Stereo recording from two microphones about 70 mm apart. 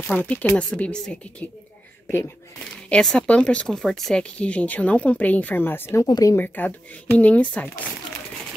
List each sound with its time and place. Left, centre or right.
0.1 s speech: left
2.9 s speech: centre
4.2 s speech: centre; by 6.0 s left
6.3 s speech: left